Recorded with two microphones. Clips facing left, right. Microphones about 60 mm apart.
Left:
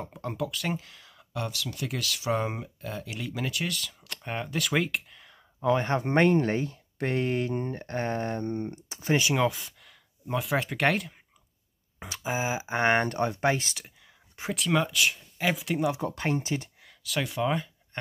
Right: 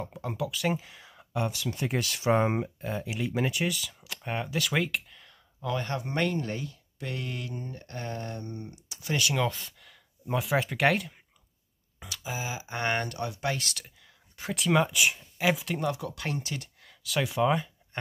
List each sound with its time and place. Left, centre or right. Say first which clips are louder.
0.0 s speech: even; centre; by 3.7 s right
3.7 s speech: left 1 dB; centre
5.6 s speech: left 6 dB; left
9.4 s speech: left 3 dB; centre
12.0 s speech: left 6 dB; left
14.5 s speech: right 1 dB; centre
15.1 s speech: right 2 dB; centre
16.0 s speech: left 5 dB; left
16.8 s speech: right 1 dB; centre